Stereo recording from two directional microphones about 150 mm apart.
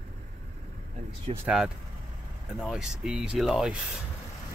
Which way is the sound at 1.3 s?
40° right (ahead or behind).